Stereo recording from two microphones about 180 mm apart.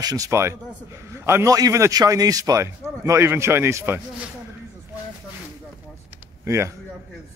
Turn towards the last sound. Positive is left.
turn(degrees=-15)  # may be behind; listen again after turning